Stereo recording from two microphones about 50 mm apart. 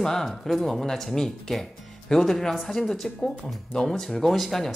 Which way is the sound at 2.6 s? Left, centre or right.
Centre.